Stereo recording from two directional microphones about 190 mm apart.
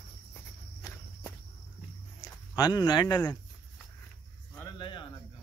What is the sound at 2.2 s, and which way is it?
Speech, 20° left (ahead or behind).